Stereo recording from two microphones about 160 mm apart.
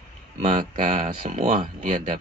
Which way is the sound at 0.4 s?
45° right (ahead or behind).